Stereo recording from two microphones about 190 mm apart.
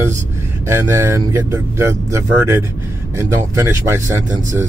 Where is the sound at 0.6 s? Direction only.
15° right (ahead or behind).